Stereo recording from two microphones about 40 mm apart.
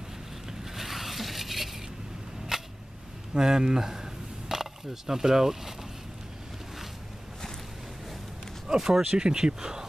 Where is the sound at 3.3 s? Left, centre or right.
Centre.